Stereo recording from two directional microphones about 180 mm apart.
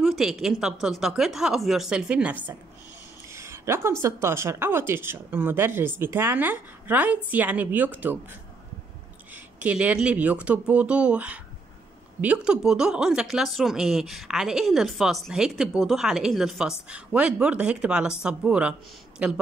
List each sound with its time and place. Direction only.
0.0 s speech: 5° right (ahead or behind)
9.3 s speech: 10° right (ahead or behind)